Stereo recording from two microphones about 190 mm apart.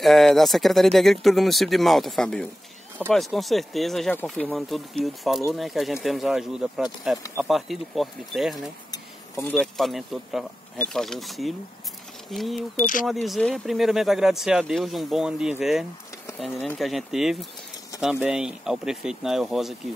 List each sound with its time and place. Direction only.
0.0 s speech: centre (ahead or behind)
12.7 s speech: 45° left (ahead or behind)
13.0 s speech: centre (ahead or behind)